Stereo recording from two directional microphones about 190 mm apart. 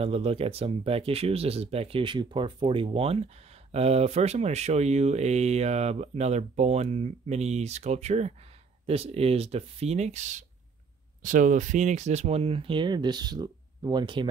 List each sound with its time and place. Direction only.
0.0 s speech: 30° right (ahead or behind)